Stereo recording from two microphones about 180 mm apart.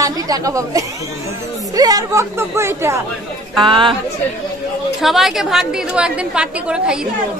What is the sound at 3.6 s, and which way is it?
Speech, 25° right (ahead or behind).